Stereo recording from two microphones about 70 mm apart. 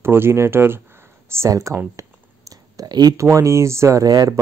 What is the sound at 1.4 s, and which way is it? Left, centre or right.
Speech, right.